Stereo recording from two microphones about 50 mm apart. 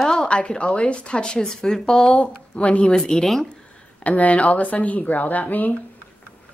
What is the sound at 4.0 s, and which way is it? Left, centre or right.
Speech, left.